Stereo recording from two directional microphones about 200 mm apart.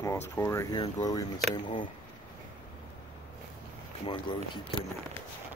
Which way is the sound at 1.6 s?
30° left (ahead or behind).